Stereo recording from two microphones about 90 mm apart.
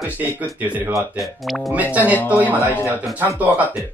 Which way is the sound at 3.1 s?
20° right (ahead or behind).